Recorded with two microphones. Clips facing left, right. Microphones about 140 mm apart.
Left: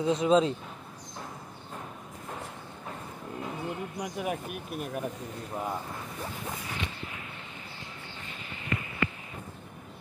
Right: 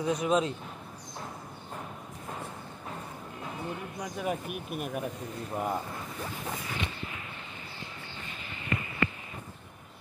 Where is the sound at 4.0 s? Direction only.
10° left (ahead or behind).